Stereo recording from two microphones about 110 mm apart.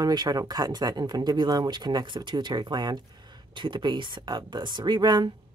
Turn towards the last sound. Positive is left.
turn(degrees=-40)  # may be behind; listen again after turning